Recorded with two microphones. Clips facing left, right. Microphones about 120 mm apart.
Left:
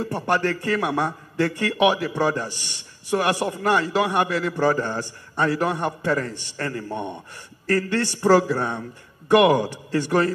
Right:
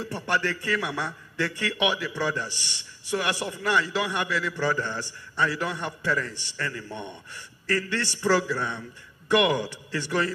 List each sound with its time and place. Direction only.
0.0 s a man's voice: 45° left (ahead or behind)